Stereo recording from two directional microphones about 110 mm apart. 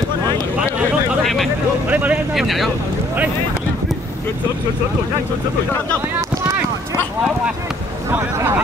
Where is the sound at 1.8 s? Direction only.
15° right (ahead or behind).